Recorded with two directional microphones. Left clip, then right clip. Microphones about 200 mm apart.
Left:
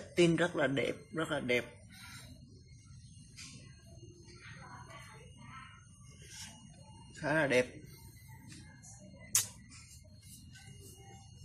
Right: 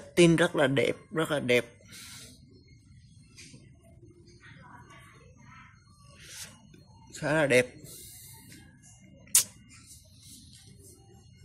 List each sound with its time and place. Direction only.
0.1 s speech: 45° right (ahead or behind)
7.1 s speech: 50° right (ahead or behind)